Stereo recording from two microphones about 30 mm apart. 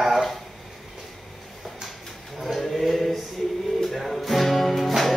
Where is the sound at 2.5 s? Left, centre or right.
Centre.